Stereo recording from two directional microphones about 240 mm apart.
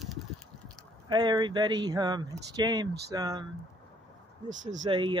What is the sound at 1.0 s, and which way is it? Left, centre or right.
Speech, centre.